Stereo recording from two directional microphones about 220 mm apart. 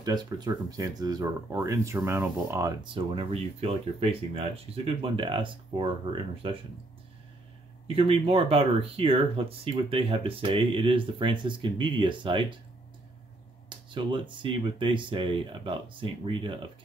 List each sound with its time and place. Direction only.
0.0 s speech: 15° right (ahead or behind)
7.8 s speech: 25° right (ahead or behind)
13.7 s speech: 20° right (ahead or behind)